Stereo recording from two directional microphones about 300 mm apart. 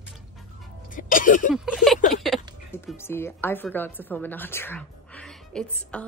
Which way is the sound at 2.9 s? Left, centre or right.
Centre.